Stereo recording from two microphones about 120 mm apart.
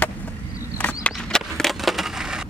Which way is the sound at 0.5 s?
15° left (ahead or behind).